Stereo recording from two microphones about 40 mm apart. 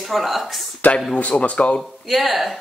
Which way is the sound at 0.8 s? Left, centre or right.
Left.